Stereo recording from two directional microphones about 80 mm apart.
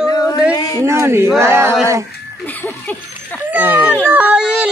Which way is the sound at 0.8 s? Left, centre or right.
Right.